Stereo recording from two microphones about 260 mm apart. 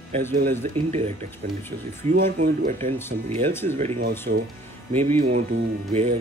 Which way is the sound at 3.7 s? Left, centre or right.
Right.